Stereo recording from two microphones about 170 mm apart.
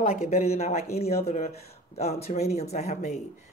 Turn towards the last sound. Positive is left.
turn(degrees=40)  # may be behind; listen again after turning